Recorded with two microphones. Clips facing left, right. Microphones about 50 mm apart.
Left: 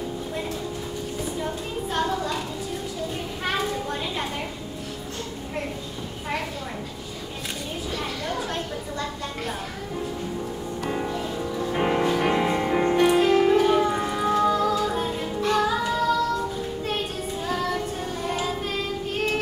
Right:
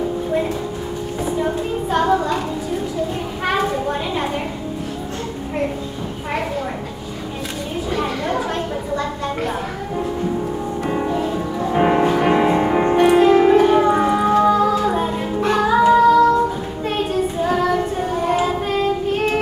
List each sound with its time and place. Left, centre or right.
3.6 s a sound: right
7.9 s chatter: right
10.9 s music: right
16.0 s child singing: centre
17.4 s child singing: right